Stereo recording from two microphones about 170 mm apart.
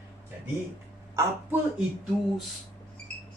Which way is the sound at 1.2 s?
10° right (ahead or behind).